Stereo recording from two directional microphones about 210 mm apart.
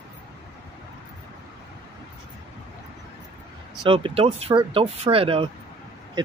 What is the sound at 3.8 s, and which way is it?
Speech, 25° right (ahead or behind).